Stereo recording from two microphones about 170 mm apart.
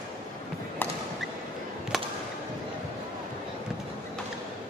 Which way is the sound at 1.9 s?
Centre (ahead or behind).